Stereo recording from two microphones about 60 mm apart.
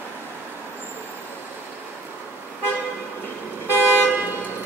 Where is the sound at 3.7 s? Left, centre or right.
Left.